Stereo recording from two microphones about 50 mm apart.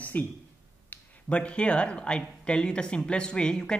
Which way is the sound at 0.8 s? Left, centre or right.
Left.